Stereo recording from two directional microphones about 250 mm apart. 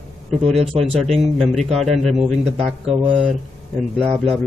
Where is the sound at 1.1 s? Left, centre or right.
Centre.